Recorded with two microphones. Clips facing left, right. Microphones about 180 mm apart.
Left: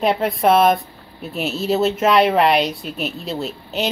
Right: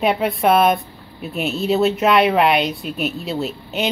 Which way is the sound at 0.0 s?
Centre (ahead or behind).